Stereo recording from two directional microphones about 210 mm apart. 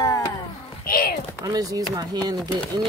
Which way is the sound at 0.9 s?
45° left (ahead or behind).